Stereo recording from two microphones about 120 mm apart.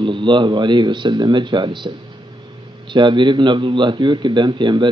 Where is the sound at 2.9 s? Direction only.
40° right (ahead or behind).